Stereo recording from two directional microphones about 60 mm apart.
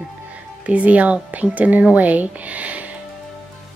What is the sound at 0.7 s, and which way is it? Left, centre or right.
Speech, right.